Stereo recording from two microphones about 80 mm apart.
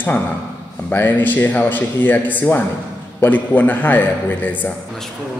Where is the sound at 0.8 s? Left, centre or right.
Left.